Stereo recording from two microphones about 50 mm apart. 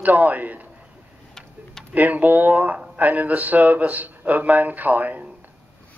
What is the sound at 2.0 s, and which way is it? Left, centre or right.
Speech, right.